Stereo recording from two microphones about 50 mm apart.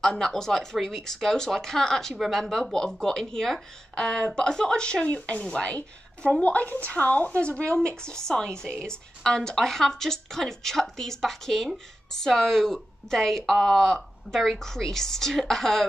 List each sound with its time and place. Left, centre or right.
0.0 s speech: centre